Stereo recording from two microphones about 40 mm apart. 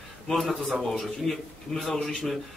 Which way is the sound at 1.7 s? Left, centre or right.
Centre.